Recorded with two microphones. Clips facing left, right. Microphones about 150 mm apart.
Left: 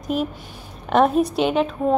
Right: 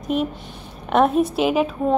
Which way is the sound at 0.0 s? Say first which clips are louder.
Right 1 dB; centre (ahead or behind).